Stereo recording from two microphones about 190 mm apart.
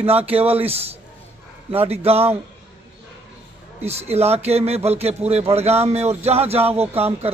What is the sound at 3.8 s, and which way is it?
Speech, 35° right (ahead or behind).